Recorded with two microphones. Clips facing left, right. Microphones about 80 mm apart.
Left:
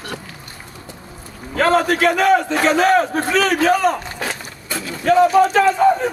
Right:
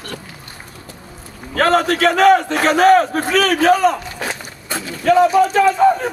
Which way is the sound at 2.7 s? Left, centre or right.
Right.